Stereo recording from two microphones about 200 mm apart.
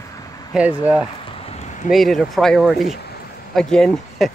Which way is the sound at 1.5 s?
35° left (ahead or behind).